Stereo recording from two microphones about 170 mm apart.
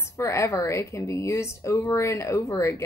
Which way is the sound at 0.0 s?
15° left (ahead or behind).